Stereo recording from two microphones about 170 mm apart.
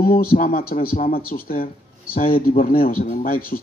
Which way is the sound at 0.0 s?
60° left (ahead or behind).